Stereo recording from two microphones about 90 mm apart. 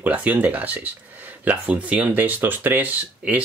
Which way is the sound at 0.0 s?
20° right (ahead or behind).